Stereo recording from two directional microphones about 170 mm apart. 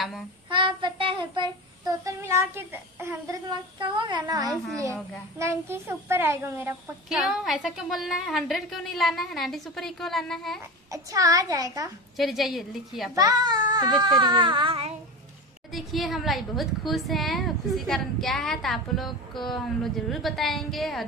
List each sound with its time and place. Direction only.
0.5 s child singing: 30° right (ahead or behind)
5.4 s a child's voice: 15° right (ahead or behind)
7.1 s a woman's voice: 5° right (ahead or behind)
10.9 s child singing: 20° right (ahead or behind)
12.2 s a woman's voice: centre (ahead or behind)
13.1 s child singing: 20° right (ahead or behind)
15.7 s a woman's voice: centre (ahead or behind)